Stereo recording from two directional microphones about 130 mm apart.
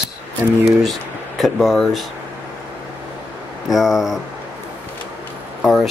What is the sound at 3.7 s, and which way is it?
Speech, centre (ahead or behind).